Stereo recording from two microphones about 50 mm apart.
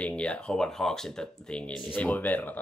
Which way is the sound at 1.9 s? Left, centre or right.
Left.